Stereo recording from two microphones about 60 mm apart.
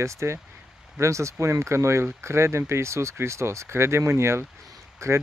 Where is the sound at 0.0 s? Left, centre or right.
Right.